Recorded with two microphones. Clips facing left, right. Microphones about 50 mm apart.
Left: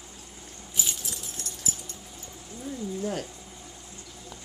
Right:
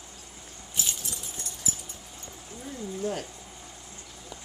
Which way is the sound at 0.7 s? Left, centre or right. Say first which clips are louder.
Left 1 dB; centre.